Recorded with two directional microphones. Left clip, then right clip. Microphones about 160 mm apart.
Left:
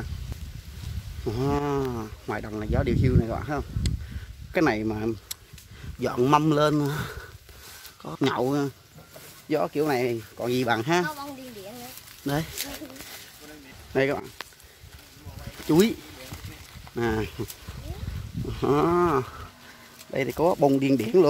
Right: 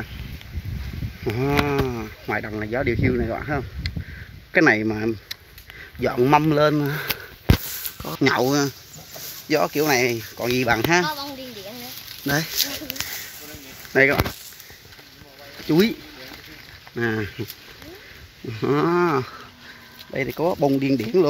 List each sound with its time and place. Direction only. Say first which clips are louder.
1.2 s a sound: right 5 dB; 15° left (ahead or behind)
2.0 s speech: right 6 dB; 5° left (ahead or behind)
6.7 s speech: right 4 dB; 5° left (ahead or behind)
12.3 s speech: right 7 dB; 10° left (ahead or behind)
13.9 s speech: right 8 dB; 10° left (ahead or behind)
15.7 s speech: right 2 dB; 15° left (ahead or behind)
17.0 s speech: right 3 dB; 10° left (ahead or behind)
18.6 s speech: right 2 dB; 5° left (ahead or behind)
20.1 s speech: even; 20° left (ahead or behind)